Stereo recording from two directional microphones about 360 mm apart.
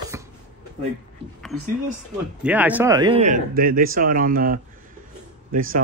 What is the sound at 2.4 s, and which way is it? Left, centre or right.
A man's voice, centre.